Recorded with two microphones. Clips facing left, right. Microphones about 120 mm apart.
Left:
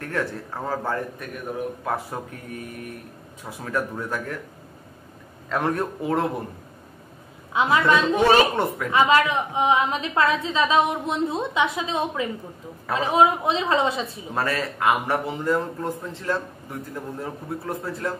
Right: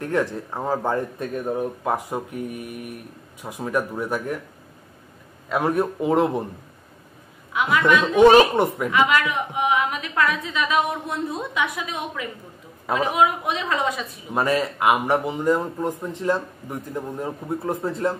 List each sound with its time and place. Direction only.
0.0 s a man's voice: 15° right (ahead or behind)
2.0 s speech: 15° right (ahead or behind)
5.5 s speech: 10° right (ahead or behind)
7.5 s a woman's voice: 30° left (ahead or behind)
8.2 s a man's voice: 20° right (ahead or behind)
8.9 s a woman's voice: 30° left (ahead or behind)
14.3 s speech: 15° right (ahead or behind)